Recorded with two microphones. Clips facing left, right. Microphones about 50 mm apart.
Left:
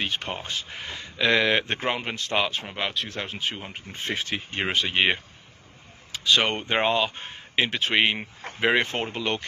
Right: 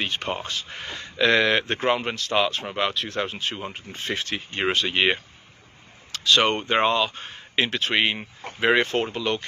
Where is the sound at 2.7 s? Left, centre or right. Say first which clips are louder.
Right 4 dB; centre.